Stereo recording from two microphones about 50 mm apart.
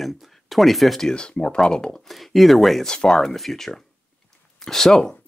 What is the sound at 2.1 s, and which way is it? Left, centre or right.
Speech, centre.